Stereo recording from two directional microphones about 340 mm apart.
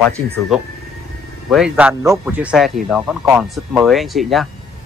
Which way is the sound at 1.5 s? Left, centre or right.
Centre.